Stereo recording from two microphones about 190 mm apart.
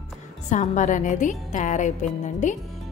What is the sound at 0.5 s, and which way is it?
A woman's voice, 40° left (ahead or behind).